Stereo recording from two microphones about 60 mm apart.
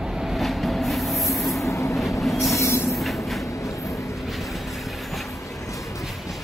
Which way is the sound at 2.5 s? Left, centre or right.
Left.